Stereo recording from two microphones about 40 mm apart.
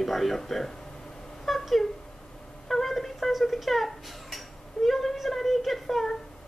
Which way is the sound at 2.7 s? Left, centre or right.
Centre.